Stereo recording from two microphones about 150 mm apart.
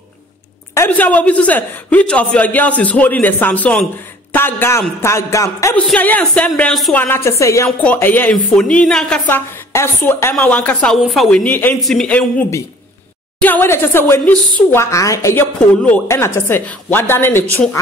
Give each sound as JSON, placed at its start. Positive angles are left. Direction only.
{"t": 0.7, "sound": "a man's voice", "side_deg": 10}
{"t": 5.8, "sound": "a man's voice", "side_deg": 10}
{"t": 7.0, "sound": "a woman's voice", "side_deg": 15}
{"t": 9.3, "sound": "a woman's voice", "side_deg": 15}
{"t": 15.6, "sound": "a man's voice", "side_deg": 10}
{"t": 16.1, "sound": "a man's voice", "side_deg": 20}